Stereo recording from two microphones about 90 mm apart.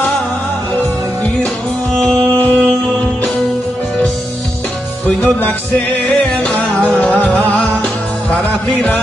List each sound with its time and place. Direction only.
2.0 s music: 5° left (ahead or behind)
5.0 s music: 20° left (ahead or behind)